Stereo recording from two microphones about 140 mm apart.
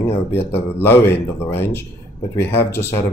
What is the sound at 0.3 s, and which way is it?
Speech, 15° left (ahead or behind).